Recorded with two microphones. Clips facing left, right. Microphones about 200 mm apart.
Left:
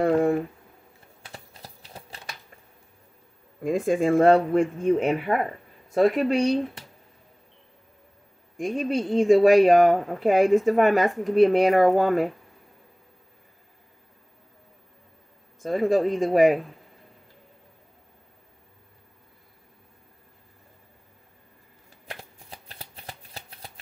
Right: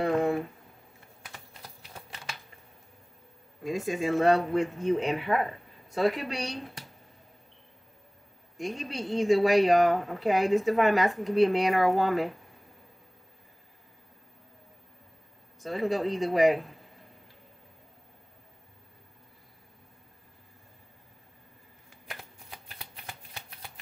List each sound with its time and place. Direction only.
1.3 s a sound: 30° left (ahead or behind)
3.6 s speech: 55° left (ahead or behind)
8.5 s speech: 50° left (ahead or behind)
15.6 s speech: 50° left (ahead or behind)
22.0 s shuffling cards: 35° left (ahead or behind)